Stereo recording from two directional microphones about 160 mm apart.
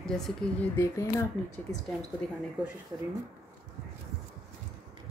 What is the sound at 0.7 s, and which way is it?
Speech, 20° left (ahead or behind).